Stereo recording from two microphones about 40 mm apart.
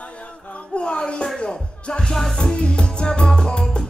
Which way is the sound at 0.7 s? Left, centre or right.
Left.